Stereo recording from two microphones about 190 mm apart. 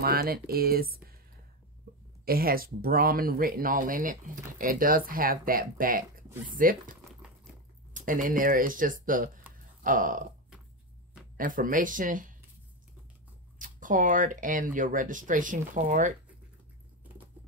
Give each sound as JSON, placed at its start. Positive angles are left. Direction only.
{"t": 0.0, "sound": "speech", "side_deg": -50}
{"t": 2.2, "sound": "speech", "side_deg": -50}
{"t": 11.3, "sound": "speech", "side_deg": -45}
{"t": 13.6, "sound": "speech", "side_deg": -45}